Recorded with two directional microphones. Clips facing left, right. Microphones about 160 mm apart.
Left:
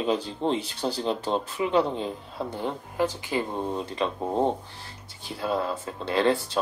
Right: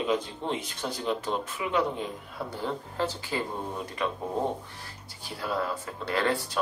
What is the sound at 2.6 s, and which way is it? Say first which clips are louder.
Speech: left 3 dB; 15° left (ahead or behind).